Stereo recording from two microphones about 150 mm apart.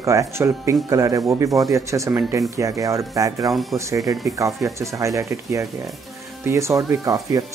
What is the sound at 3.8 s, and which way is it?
Speech, 20° right (ahead or behind).